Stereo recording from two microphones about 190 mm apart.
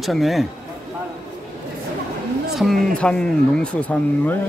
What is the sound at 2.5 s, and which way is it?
Speech, centre (ahead or behind).